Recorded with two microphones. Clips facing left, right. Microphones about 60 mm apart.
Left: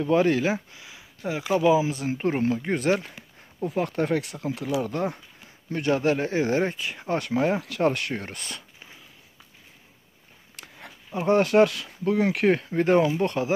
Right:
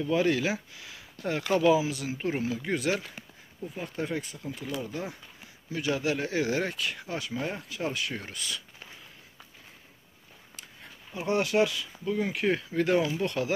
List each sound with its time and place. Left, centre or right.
0.0 s speech: left
0.7 s a sound: centre
1.2 s speech: centre
1.8 s speech: left
3.6 s speech: left
4.8 s speech: left
7.1 s speech: left
11.1 s speech: left
12.4 s speech: left